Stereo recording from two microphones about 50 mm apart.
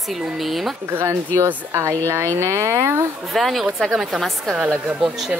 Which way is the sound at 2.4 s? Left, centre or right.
Right.